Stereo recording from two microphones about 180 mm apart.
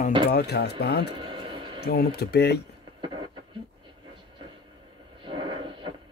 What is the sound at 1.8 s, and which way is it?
Speech, 65° left (ahead or behind).